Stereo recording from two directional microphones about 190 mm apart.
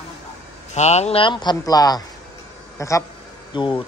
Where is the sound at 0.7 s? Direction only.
35° left (ahead or behind).